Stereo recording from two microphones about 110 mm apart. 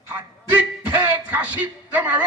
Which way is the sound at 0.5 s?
15° right (ahead or behind).